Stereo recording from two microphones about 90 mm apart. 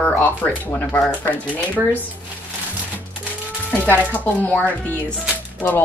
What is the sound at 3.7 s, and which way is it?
A woman's voice, 20° left (ahead or behind).